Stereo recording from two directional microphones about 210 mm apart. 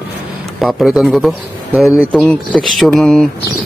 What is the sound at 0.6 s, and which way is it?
A man's voice, centre (ahead or behind).